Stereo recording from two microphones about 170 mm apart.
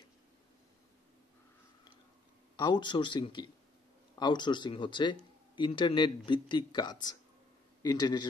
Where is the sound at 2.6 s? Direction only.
25° left (ahead or behind).